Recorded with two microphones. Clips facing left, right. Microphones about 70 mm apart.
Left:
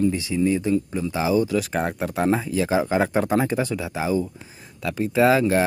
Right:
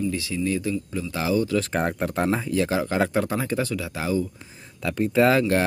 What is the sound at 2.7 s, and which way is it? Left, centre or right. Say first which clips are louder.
Speech: left 5 dB; centre.